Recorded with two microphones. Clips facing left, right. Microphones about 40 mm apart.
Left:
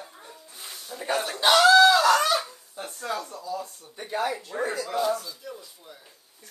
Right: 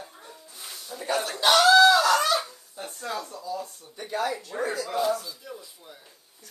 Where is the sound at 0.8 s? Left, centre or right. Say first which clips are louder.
Even; left.